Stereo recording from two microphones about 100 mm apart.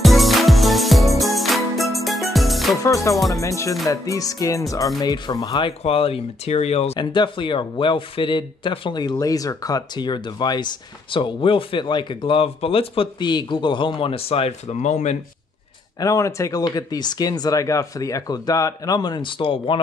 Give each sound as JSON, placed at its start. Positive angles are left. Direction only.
{"t": 0.0, "sound": "music", "side_deg": 0}
{"t": 2.8, "sound": "speech", "side_deg": 35}
{"t": 5.9, "sound": "speech", "side_deg": 75}
{"t": 7.0, "sound": "speech", "side_deg": 50}
{"t": 13.2, "sound": "speech", "side_deg": 50}
{"t": 16.0, "sound": "speech", "side_deg": 35}
{"t": 16.6, "sound": "speech", "side_deg": 40}